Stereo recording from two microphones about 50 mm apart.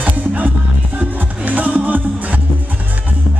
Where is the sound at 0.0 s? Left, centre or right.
Right.